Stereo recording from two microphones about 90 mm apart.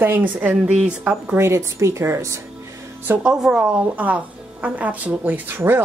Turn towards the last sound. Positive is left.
turn(degrees=-25)  # may be behind; listen again after turning